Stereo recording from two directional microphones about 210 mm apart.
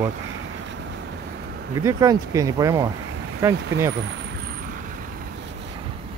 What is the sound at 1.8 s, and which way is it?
Speech, 15° right (ahead or behind).